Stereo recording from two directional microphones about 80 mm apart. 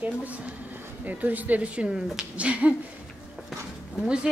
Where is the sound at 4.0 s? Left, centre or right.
Centre.